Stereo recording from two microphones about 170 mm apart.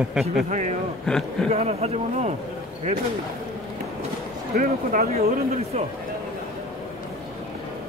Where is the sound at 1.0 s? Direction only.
Centre (ahead or behind).